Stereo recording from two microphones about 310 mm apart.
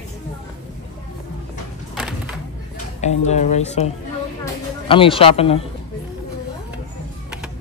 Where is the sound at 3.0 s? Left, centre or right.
Left.